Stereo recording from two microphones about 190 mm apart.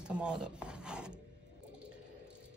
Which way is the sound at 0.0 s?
5° right (ahead or behind).